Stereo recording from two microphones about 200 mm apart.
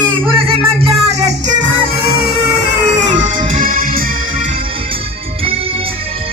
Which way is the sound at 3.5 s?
45° right (ahead or behind).